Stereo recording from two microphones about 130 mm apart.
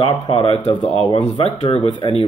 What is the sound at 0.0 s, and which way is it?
Speech, 45° left (ahead or behind).